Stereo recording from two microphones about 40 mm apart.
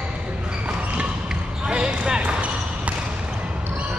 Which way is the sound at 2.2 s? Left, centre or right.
Right.